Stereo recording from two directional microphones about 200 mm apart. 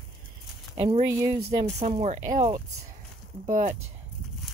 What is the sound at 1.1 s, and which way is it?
Speech, 15° right (ahead or behind).